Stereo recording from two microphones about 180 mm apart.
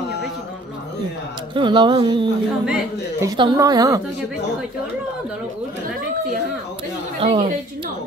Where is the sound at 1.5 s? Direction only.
25° right (ahead or behind).